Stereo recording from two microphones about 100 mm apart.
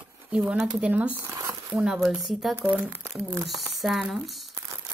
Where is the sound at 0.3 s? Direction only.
15° right (ahead or behind); by 1.6 s 30° right (ahead or behind).